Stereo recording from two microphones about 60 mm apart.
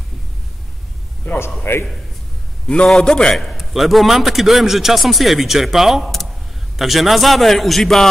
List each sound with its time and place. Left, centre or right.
1.3 s a sound: left
1.6 s a man's voice: left
3.0 s a man's voice: centre
3.3 s a man's voice: centre